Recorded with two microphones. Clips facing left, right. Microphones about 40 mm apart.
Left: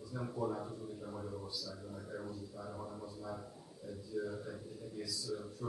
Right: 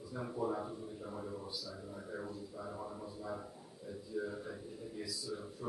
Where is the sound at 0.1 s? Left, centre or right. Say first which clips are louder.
Right 1 dB; centre.